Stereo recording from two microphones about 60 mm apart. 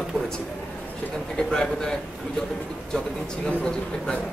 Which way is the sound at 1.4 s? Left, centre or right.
Centre.